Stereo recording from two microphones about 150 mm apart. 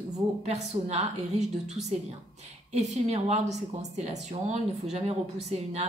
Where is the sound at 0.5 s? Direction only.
45° right (ahead or behind).